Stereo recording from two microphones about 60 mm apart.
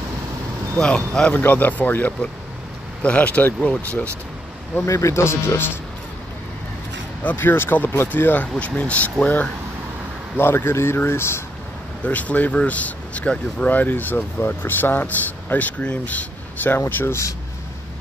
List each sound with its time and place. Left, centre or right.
0.7 s speech: centre
1.3 s speech: left
4.8 s speech: left
7.2 s speech: left
10.3 s speech: left
12.0 s speech: left
16.7 s speech: left